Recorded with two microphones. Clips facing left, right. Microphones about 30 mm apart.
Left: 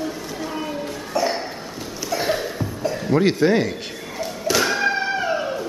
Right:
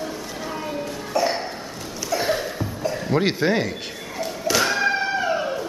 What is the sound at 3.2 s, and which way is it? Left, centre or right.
Thump, centre.